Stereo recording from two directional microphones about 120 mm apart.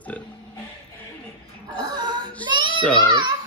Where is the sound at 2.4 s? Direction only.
40° right (ahead or behind).